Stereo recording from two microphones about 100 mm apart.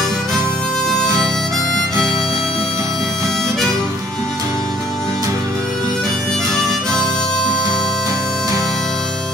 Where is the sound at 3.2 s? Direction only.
5° left (ahead or behind).